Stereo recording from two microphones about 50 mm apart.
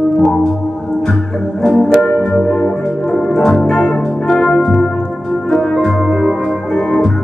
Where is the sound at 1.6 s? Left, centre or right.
Centre.